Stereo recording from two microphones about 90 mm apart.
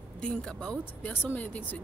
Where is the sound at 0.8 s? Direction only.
20° left (ahead or behind).